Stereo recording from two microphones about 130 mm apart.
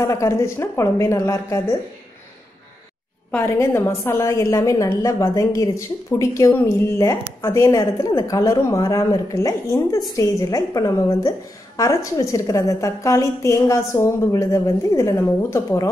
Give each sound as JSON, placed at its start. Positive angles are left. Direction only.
{"t": 0.0, "sound": "a woman's voice", "side_deg": 25}
{"t": 3.3, "sound": "a woman's voice", "side_deg": 15}